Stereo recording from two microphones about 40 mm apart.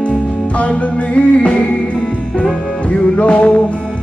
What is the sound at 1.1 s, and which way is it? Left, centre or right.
Music, left.